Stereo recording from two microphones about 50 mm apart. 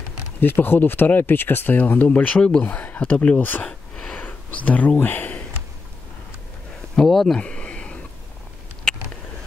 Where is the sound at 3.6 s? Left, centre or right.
Centre.